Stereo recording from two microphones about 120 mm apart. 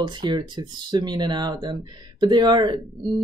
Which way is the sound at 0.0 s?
40° right (ahead or behind).